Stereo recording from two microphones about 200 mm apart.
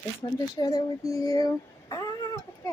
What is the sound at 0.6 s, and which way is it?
Speech, 20° left (ahead or behind).